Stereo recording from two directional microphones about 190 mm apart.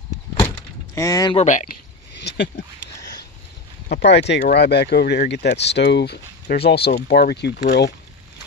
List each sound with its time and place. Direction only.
0.9 s speech: 15° left (ahead or behind)
1.3 s speech: 35° left (ahead or behind)
2.1 s a sound: 60° left (ahead or behind)
3.9 s speech: 60° left (ahead or behind)